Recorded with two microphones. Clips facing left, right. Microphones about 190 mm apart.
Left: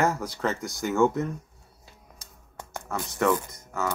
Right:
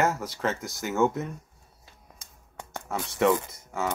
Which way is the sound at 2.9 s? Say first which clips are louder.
Right 1 dB; 25° right (ahead or behind).